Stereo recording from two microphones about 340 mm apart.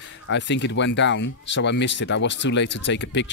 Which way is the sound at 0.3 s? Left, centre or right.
Left.